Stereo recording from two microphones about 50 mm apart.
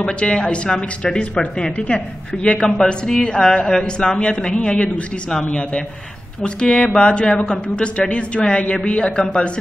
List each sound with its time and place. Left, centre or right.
0.0 s a woman's voice: centre